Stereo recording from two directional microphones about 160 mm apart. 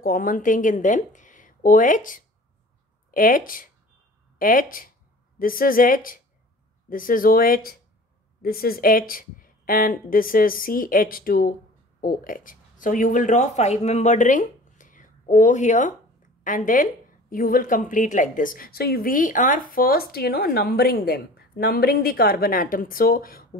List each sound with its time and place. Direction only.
0.0 s speech: 60° left (ahead or behind)